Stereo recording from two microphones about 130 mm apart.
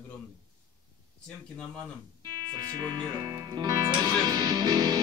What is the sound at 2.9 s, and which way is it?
Music, 35° right (ahead or behind).